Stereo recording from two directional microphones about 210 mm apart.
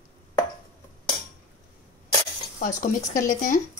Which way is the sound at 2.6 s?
35° left (ahead or behind).